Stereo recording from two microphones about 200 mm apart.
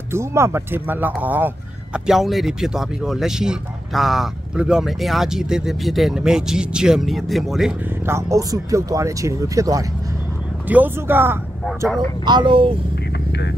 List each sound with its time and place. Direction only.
0.1 s speech: 15° right (ahead or behind)
8.1 s speech: 15° right (ahead or behind)
12.3 s speech: 25° right (ahead or behind)